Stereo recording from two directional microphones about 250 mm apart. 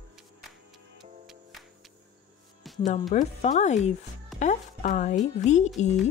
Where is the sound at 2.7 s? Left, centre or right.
Centre.